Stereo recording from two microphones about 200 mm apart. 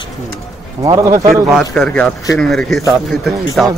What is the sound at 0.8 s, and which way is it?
Speech, 20° right (ahead or behind).